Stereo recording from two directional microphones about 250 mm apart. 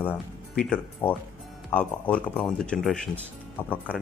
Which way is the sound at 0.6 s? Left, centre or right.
Centre.